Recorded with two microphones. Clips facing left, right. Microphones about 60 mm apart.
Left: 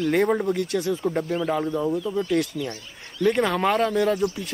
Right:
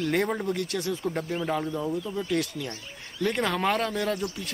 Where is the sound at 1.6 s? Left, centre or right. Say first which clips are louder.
Left 5 dB; centre.